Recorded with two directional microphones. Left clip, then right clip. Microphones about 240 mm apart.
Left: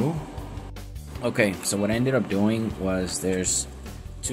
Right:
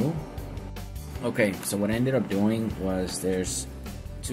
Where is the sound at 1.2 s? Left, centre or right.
Centre.